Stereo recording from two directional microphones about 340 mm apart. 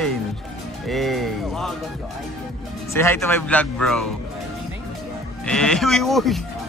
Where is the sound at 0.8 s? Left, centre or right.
Centre.